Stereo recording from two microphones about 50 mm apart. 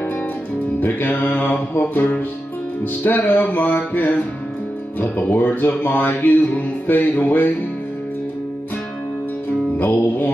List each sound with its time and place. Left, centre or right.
0.7 s speech: left
9.8 s speech: left